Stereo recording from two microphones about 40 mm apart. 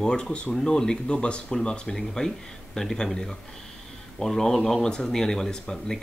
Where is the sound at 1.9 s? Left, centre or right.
Centre.